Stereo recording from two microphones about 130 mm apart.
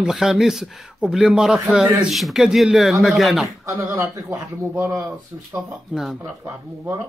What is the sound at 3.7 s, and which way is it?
Speech, 20° right (ahead or behind).